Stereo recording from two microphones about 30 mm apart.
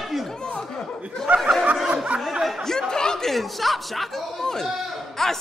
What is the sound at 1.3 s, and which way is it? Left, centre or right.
Snicker, right.